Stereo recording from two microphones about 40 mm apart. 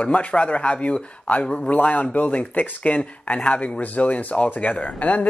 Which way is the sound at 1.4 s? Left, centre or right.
Left.